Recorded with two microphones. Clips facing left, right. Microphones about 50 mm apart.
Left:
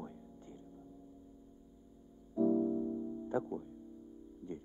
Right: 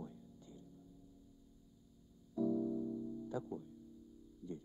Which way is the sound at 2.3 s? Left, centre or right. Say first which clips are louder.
Left 6 dB; left.